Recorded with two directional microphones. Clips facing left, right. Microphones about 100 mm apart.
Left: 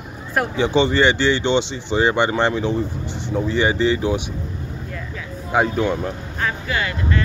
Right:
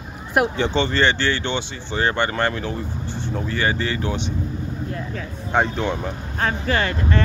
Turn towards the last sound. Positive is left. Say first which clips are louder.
# right 1 dB
turn(degrees=-40)  # may be behind; listen again after turning